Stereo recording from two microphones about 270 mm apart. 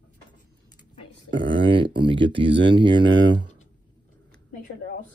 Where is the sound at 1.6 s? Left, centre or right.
Centre.